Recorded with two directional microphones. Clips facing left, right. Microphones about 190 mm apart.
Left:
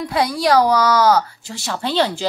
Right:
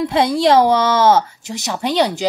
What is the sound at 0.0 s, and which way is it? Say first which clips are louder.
A woman's voice: right 4 dB; 25° right (ahead or behind).